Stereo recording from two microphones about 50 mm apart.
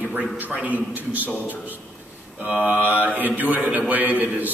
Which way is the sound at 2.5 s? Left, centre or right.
Right.